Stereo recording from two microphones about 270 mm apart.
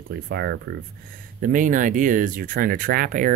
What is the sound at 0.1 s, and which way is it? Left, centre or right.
Speech, right.